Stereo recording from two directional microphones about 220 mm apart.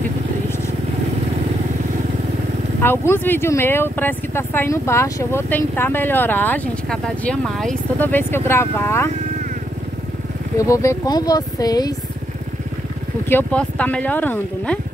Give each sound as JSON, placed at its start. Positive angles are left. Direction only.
{"t": 2.8, "sound": "speech", "side_deg": 10}
{"t": 10.6, "sound": "speech", "side_deg": 15}
{"t": 13.3, "sound": "speech", "side_deg": 10}